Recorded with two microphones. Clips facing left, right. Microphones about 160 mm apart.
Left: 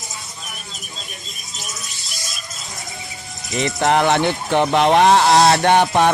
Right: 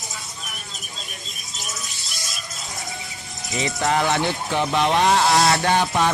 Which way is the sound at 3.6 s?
65° left (ahead or behind).